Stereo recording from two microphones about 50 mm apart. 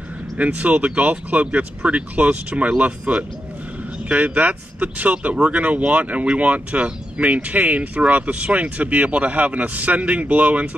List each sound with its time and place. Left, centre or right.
0.4 s speech: right